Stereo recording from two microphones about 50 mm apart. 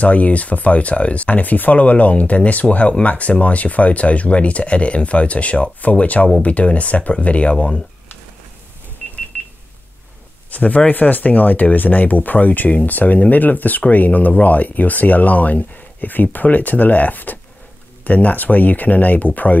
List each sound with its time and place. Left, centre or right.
0.0 s speech: left
10.5 s speech: left